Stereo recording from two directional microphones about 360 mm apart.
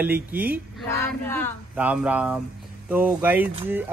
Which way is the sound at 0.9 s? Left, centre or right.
Centre.